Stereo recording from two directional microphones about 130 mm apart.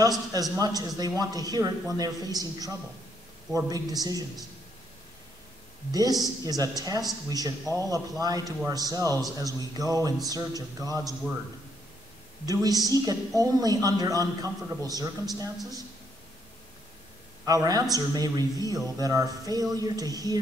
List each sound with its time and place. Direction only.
0.3 s speech: 30° right (ahead or behind)
5.9 s speech: 30° right (ahead or behind)
12.4 s speech: 30° right (ahead or behind)
17.5 s speech: 30° right (ahead or behind)